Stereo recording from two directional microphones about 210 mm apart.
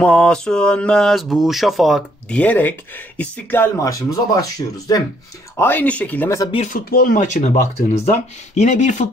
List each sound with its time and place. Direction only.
0.0 s speech: 5° left (ahead or behind)
6.5 s speech: 30° left (ahead or behind)
6.9 s speech: 45° left (ahead or behind)